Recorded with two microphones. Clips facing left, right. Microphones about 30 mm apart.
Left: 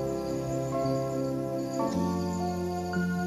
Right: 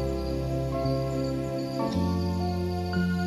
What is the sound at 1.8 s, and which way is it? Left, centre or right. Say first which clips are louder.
Music: right 1 dB; right.